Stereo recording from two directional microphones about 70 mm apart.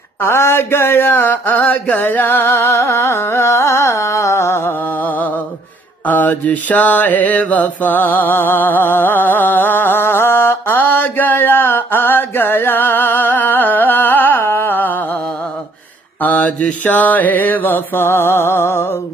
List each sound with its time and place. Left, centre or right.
0.2 s mantra: left
16.2 s music: left